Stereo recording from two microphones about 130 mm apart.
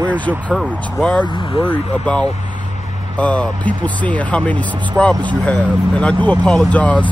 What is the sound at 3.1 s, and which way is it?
Speech, 10° left (ahead or behind).